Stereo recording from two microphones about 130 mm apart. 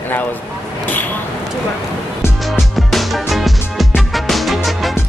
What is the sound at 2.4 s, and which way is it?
Music, centre (ahead or behind).